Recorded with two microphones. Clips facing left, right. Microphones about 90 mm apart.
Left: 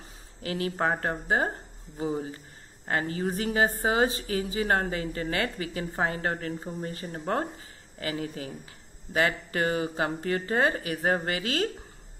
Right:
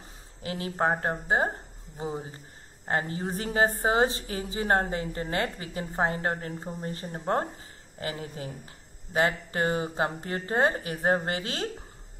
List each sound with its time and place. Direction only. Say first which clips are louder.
0.4 s a woman's voice: even; 25° right (ahead or behind)